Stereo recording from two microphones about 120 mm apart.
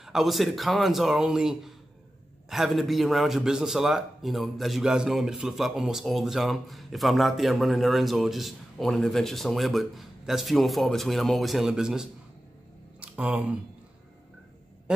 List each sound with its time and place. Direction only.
0.0 s a man's voice: centre (ahead or behind)